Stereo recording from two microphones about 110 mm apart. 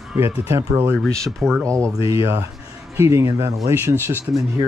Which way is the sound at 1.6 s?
30° right (ahead or behind).